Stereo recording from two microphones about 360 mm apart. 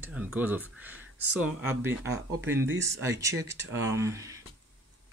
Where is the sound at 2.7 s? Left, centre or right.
Right.